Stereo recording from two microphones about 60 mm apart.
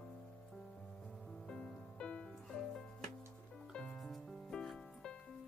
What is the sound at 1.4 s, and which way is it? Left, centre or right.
Music, centre.